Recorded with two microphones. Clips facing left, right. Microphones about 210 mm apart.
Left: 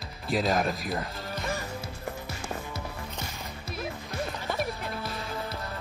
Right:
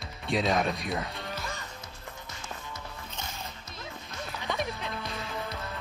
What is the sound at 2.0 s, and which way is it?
Music, 65° left (ahead or behind).